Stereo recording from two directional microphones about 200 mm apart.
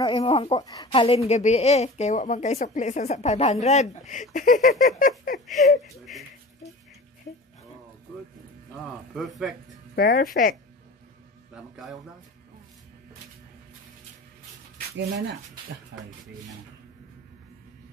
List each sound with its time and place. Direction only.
0.0 s a woman's voice: 25° left (ahead or behind)
5.8 s speech: centre (ahead or behind)
9.1 s speech: centre (ahead or behind)
9.9 s speech: 45° left (ahead or behind)
11.5 s a man's voice: centre (ahead or behind)
15.9 s speech: 60° right (ahead or behind)